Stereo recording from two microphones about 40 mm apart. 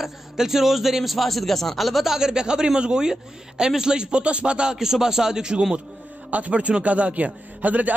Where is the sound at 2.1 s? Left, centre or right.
Centre.